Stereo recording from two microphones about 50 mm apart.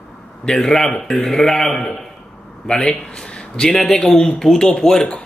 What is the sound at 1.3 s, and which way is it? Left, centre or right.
Speech, centre.